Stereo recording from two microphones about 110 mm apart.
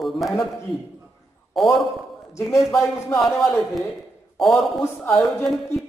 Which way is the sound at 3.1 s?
Centre (ahead or behind).